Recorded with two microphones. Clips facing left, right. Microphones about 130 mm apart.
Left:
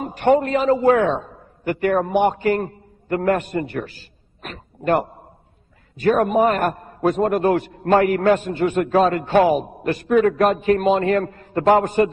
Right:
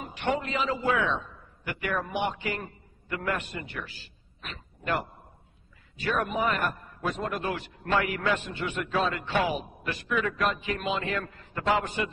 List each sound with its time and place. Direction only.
0.0 s a man's voice: 45° left (ahead or behind)
4.4 s a sound: 50° left (ahead or behind)
5.9 s a man's voice: 45° left (ahead or behind)